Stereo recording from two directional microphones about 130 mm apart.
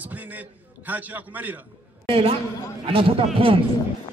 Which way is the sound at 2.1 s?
45° right (ahead or behind).